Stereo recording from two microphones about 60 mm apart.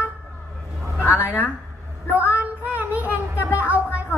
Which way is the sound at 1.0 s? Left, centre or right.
Left.